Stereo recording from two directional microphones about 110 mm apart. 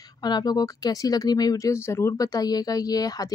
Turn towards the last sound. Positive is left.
turn(degrees=35)  # may be behind; listen again after turning